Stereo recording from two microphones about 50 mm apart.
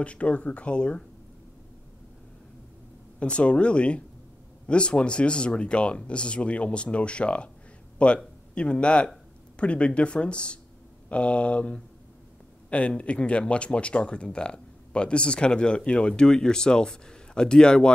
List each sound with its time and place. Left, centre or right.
0.0 s speech: left
3.2 s speech: left